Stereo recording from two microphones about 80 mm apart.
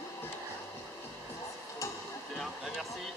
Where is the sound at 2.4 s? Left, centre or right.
Centre.